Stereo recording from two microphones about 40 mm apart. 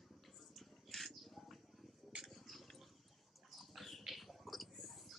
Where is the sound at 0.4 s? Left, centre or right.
Centre.